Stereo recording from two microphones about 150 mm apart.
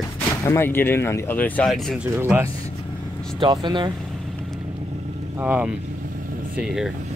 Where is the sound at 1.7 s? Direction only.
Centre (ahead or behind).